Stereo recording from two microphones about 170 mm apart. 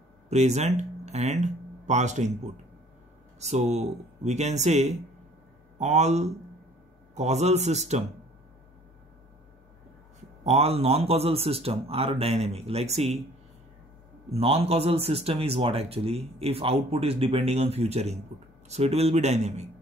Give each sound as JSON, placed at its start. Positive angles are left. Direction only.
{"t": 0.3, "sound": "speech", "side_deg": -40}
{"t": 10.4, "sound": "speech", "side_deg": -35}
{"t": 14.3, "sound": "speech", "side_deg": -35}